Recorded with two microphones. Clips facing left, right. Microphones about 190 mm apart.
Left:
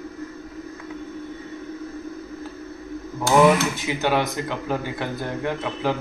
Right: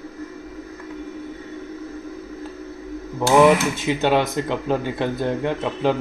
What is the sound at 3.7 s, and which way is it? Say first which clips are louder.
Speech: right 3 dB; 25° right (ahead or behind).